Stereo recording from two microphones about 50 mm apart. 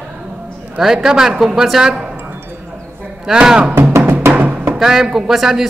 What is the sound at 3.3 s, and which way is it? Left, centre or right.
Speech, centre.